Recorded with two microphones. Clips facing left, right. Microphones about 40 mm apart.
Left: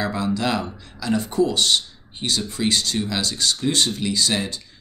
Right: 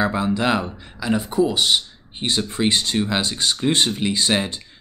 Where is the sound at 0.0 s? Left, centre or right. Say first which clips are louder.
Right 3 dB; right.